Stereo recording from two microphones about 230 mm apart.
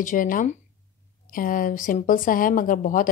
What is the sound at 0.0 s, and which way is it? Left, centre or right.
Speech, left.